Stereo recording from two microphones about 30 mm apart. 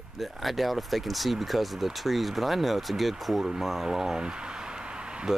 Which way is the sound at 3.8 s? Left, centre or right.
Centre.